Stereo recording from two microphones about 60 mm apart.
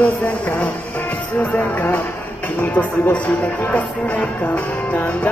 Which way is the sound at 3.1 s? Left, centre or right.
Left.